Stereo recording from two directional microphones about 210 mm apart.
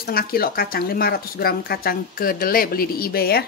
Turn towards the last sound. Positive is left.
turn(degrees=45)  # may be behind; listen again after turning